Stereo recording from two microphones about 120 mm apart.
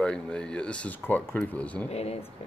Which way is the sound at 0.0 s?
5° left (ahead or behind).